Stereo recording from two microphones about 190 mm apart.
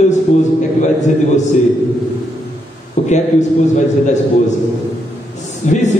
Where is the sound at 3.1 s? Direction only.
40° left (ahead or behind).